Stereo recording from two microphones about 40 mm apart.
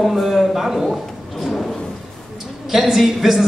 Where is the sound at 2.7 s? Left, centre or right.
Centre.